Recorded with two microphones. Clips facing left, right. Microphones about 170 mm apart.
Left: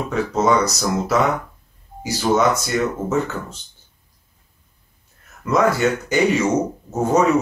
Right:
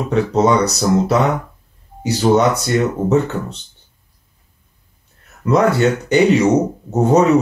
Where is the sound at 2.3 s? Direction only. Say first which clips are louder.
Right 4 dB; 25° right (ahead or behind).